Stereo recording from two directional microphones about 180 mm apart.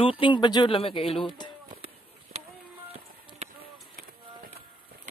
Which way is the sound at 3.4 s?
35° right (ahead or behind).